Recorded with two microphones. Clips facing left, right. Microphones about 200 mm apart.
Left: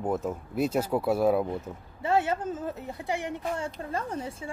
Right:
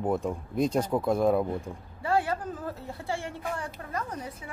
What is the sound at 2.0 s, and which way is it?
A woman's voice, 20° left (ahead or behind).